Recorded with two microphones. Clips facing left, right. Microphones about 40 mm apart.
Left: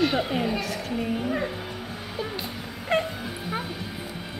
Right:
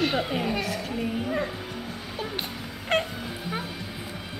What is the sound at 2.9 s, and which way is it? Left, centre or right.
Music, right.